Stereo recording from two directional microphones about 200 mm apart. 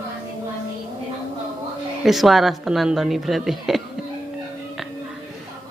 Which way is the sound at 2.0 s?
Centre (ahead or behind).